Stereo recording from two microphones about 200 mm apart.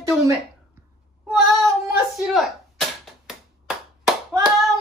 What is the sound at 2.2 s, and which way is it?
Clapping, centre (ahead or behind).